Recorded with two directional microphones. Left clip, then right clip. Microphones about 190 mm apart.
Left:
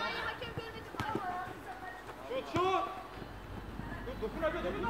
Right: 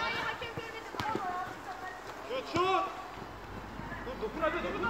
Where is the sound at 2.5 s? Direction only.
40° right (ahead or behind).